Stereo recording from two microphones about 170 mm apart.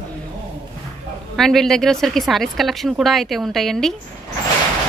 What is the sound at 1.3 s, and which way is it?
A woman's voice, centre (ahead or behind).